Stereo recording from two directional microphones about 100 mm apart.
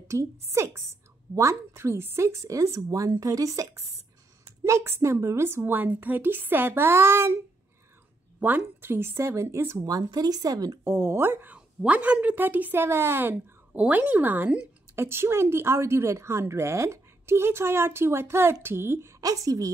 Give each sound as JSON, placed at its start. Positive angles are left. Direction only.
{"t": 0.1, "sound": "a woman's voice", "side_deg": -30}
{"t": 8.4, "sound": "a woman's voice", "side_deg": -20}
{"t": 9.8, "sound": "speech", "side_deg": -40}
{"t": 10.8, "sound": "a woman's voice", "side_deg": -20}